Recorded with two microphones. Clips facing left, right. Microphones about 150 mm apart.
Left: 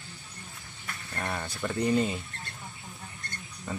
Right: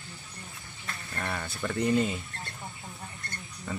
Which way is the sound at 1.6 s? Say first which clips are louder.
Even; 5° left (ahead or behind).